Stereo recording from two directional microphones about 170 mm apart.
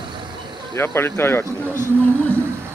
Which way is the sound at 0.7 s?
15° left (ahead or behind).